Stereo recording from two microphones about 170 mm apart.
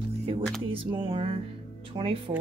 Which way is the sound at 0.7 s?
30° right (ahead or behind).